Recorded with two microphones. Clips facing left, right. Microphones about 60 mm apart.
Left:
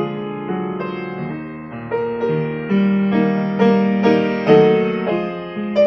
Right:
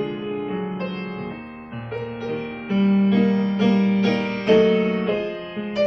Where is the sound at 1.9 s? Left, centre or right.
Left.